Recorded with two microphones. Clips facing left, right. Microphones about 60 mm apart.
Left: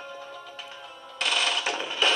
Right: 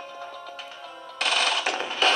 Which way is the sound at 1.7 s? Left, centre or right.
Right.